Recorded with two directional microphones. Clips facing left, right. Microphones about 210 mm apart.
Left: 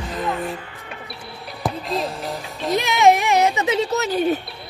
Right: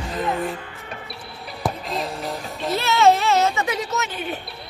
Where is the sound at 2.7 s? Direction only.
15° left (ahead or behind); by 4.2 s 35° left (ahead or behind).